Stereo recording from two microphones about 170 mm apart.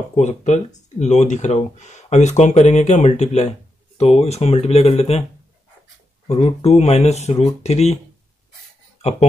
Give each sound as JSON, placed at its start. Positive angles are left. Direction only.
{"t": 0.1, "sound": "speech", "side_deg": 45}
{"t": 6.2, "sound": "speech", "side_deg": 35}